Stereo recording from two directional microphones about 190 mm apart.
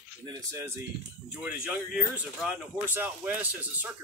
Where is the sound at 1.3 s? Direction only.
5° right (ahead or behind).